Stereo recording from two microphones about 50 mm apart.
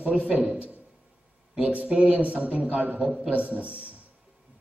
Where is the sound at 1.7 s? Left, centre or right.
Right.